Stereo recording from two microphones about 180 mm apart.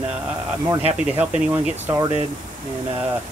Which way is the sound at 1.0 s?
5° right (ahead or behind).